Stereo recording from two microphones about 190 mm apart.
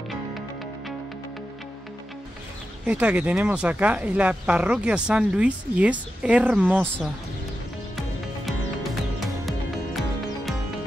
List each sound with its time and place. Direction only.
2.9 s speech: 5° right (ahead or behind)
9.2 s music: centre (ahead or behind)